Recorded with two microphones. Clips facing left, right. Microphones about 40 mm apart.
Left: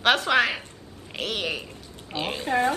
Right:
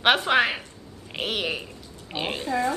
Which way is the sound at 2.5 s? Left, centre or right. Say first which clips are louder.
Left 3 dB; left.